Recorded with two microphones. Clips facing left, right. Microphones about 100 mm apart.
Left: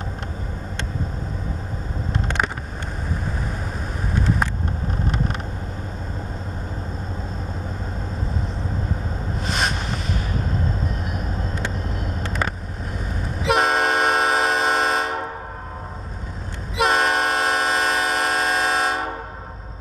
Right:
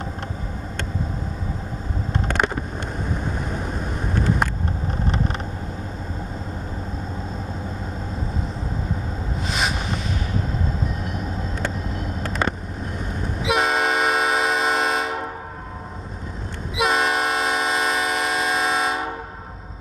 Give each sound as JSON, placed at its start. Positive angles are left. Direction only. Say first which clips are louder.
{"t": 4.1, "sound": "vehicle", "louder": "right 1 dB", "side_deg": 0}
{"t": 9.5, "sound": "a sound", "louder": "left 1 dB", "side_deg": 0}
{"t": 11.1, "sound": "vehicle", "louder": "even", "side_deg": 5}
{"t": 13.4, "sound": "train", "louder": "left 2 dB", "side_deg": 0}
{"t": 16.7, "sound": "train", "louder": "left 1 dB", "side_deg": 0}